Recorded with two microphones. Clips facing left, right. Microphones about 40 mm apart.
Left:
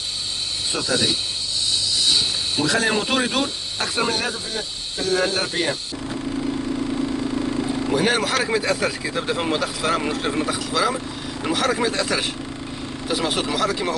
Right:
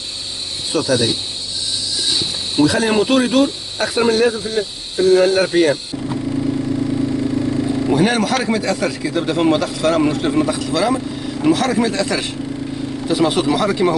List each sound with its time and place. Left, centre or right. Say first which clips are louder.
0.7 s speech: right 6 dB; centre
2.6 s a man's voice: right 7 dB; centre
7.9 s a man's voice: right 4 dB; centre
13.1 s speech: right 7 dB; centre